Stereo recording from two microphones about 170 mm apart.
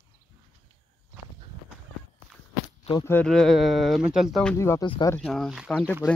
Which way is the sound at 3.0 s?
5° left (ahead or behind).